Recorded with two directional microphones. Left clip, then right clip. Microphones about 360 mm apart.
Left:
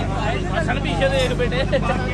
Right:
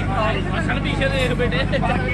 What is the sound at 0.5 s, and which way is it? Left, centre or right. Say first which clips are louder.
Speech: left 1 dB; left.